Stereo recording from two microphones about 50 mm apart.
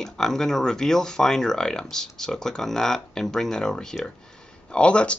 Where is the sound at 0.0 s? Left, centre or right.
Centre.